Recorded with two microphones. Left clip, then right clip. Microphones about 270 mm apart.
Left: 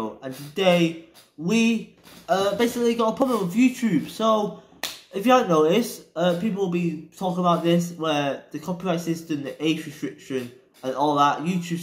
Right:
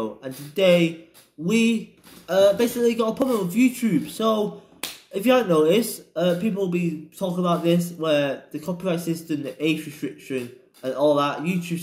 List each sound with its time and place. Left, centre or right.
0.0 s speech: centre
11.4 s speech: right